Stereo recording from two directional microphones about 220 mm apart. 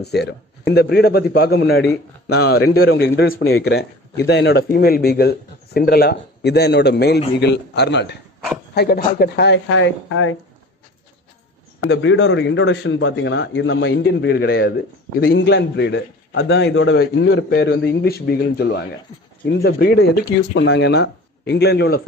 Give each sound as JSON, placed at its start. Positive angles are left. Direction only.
{"t": 0.0, "sound": "speech", "side_deg": 50}
{"t": 11.8, "sound": "a man's voice", "side_deg": 55}